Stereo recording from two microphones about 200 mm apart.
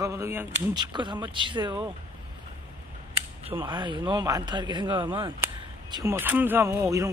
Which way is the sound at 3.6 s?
20° right (ahead or behind).